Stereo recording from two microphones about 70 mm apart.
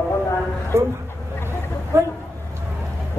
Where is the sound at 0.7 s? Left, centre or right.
Right.